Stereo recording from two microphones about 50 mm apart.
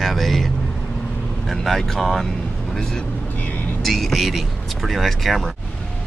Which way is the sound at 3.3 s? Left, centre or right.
Left.